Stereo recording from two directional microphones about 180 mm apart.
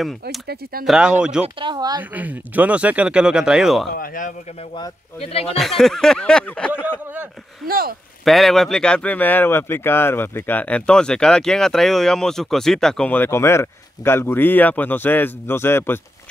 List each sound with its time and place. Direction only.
0.8 s a sound: 5° right (ahead or behind)
1.6 s speech: 25° right (ahead or behind)
2.0 s speech: 10° right (ahead or behind)
3.9 s speech: 50° left (ahead or behind)
5.2 s speech: 35° left (ahead or behind)
5.6 s a sound: centre (ahead or behind)
7.6 s speech: 55° right (ahead or behind)
8.3 s speech: centre (ahead or behind)